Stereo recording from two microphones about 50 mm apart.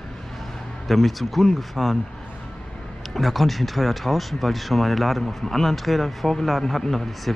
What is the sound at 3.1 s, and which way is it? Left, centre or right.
Speech, centre.